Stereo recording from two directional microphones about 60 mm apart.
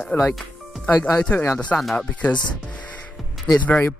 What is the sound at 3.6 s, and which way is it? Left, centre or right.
Speech, left.